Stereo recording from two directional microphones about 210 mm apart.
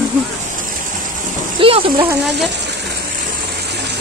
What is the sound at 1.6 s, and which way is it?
Speech, 25° right (ahead or behind).